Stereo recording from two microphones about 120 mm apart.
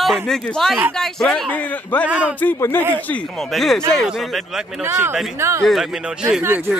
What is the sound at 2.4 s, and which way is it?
Speech, 15° left (ahead or behind).